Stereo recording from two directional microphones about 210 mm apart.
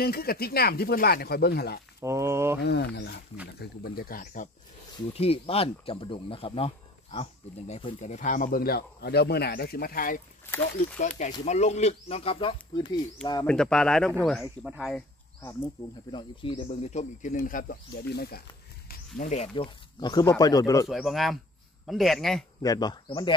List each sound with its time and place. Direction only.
0.0 s speech: 45° left (ahead or behind)
2.0 s speech: 15° right (ahead or behind)
2.6 s speech: 50° left (ahead or behind)
5.1 s speech: 30° left (ahead or behind)
10.4 s speech: 10° left (ahead or behind)
11.0 s speech: 35° left (ahead or behind); by 13.5 s 20° left (ahead or behind)
13.5 s speech: 5° left (ahead or behind)
15.4 s speech: 20° left (ahead or behind); by 18.4 s 50° left (ahead or behind)
19.1 s speech: 35° left (ahead or behind); by 20.9 s 15° left (ahead or behind)
20.9 s speech: centre (ahead or behind)
22.6 s speech: 20° left (ahead or behind)